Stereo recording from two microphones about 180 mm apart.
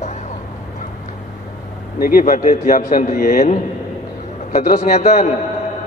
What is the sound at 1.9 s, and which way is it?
A man's voice, 55° left (ahead or behind).